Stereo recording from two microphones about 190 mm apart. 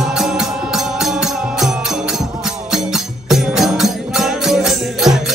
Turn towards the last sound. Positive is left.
turn(degrees=0)  # may be behind; listen again after turning